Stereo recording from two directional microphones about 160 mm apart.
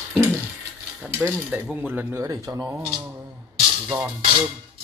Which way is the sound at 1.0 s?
5° right (ahead or behind).